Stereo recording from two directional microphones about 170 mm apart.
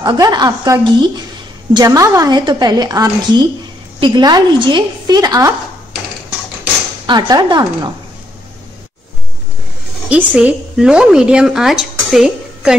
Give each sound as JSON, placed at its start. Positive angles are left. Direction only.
{"t": 0.0, "sound": "a woman's voice", "side_deg": -25}
{"t": 7.1, "sound": "a woman's voice", "side_deg": -25}
{"t": 10.0, "sound": "a woman's voice", "side_deg": -5}